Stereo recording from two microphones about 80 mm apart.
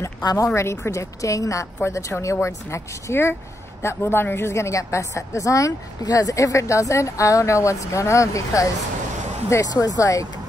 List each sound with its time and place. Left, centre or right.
0.2 s speech: left
0.6 s a woman's voice: left